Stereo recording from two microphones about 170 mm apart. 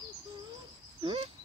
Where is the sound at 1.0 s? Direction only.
30° right (ahead or behind).